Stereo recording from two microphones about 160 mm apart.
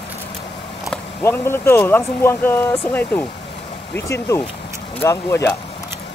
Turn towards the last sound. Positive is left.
turn(degrees=15)  # may be behind; listen again after turning